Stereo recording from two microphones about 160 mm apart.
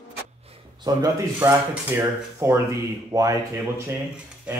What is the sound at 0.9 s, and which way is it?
Speech, 20° right (ahead or behind).